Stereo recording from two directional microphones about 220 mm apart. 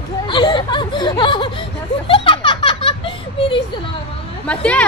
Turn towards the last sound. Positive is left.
turn(degrees=5)  # may be behind; listen again after turning